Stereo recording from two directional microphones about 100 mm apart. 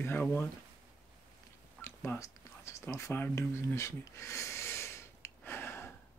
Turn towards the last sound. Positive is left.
turn(degrees=25)  # may be behind; listen again after turning